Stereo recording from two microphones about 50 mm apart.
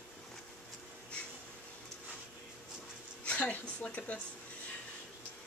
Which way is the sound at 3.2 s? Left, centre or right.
Left.